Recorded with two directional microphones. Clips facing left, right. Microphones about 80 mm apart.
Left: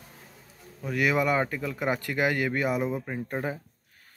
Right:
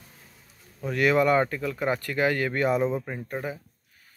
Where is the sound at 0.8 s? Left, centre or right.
Centre.